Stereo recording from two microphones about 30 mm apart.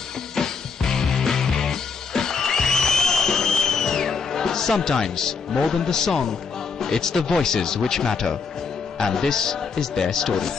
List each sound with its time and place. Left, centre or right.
0.4 s music: centre
6.8 s a man's voice: centre